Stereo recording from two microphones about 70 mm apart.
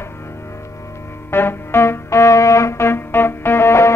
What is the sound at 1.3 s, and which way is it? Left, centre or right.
Music, left.